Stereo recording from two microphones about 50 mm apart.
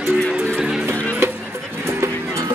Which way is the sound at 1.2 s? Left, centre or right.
Right.